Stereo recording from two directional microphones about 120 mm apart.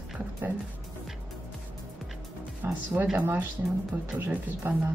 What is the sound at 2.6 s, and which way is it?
A woman's voice, 15° right (ahead or behind).